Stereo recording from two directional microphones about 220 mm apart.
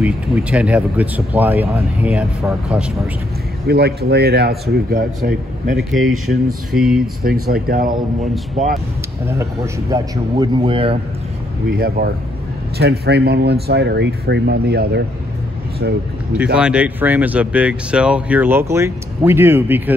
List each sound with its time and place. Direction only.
0.0 s speech: 5° right (ahead or behind)
3.6 s speech: 45° right (ahead or behind)
5.9 s speech: centre (ahead or behind)
7.4 s speech: 45° right (ahead or behind)
9.4 s speech: 15° right (ahead or behind)
11.7 s speech: 45° right (ahead or behind)
16.5 s speech: 5° right (ahead or behind)